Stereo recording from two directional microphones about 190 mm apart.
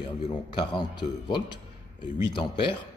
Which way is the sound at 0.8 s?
25° left (ahead or behind).